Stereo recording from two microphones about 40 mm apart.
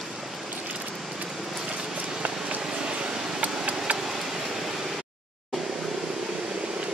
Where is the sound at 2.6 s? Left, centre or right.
Centre.